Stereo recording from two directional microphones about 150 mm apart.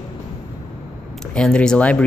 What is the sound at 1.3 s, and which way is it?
Speech, 5° left (ahead or behind).